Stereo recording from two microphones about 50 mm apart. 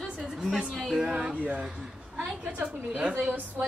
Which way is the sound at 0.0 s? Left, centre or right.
Centre.